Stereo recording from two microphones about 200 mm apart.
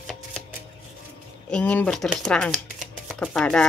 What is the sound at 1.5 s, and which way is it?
Speech, 5° left (ahead or behind).